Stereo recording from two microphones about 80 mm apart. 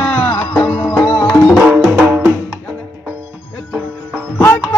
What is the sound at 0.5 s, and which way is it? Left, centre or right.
Music, left.